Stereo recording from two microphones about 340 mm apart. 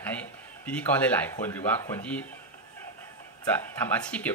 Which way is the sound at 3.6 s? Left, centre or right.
Centre.